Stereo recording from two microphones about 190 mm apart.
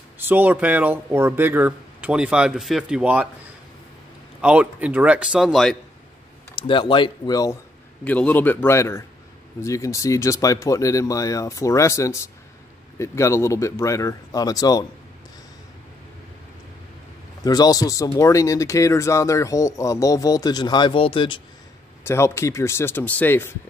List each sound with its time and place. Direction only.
0.3 s speech: 10° right (ahead or behind)
4.4 s speech: 5° right (ahead or behind)
6.5 s speech: 25° left (ahead or behind)
8.0 s speech: 10° left (ahead or behind)
17.5 s speech: 20° left (ahead or behind)
22.0 s speech: 15° left (ahead or behind)